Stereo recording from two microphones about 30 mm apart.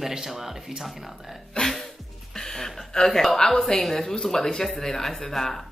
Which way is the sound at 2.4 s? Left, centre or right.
Centre.